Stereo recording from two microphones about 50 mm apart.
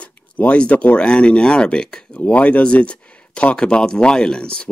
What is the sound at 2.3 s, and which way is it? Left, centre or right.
Speech, left.